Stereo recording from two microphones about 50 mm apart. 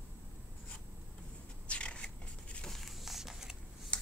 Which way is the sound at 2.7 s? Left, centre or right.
Centre.